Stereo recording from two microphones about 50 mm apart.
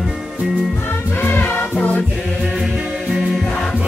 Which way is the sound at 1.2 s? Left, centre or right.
Left.